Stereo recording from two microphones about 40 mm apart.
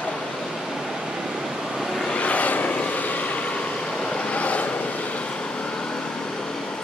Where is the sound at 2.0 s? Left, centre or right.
Left.